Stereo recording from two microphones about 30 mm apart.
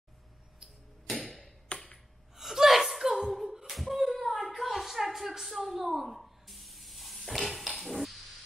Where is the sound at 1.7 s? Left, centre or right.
Left.